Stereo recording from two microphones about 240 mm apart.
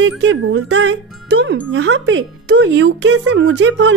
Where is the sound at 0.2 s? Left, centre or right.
Right.